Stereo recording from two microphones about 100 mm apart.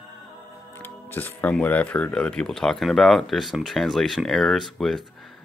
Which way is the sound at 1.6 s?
15° left (ahead or behind).